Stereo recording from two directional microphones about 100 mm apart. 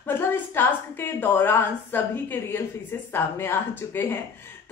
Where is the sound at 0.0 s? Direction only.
20° left (ahead or behind).